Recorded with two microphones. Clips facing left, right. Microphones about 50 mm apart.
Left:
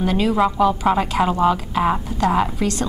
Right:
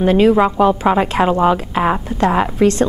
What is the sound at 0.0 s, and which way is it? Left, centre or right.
A woman's voice, right.